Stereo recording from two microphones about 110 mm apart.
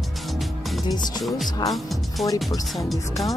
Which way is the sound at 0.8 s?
40° left (ahead or behind).